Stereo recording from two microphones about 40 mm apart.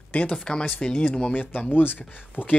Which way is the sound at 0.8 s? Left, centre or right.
Left.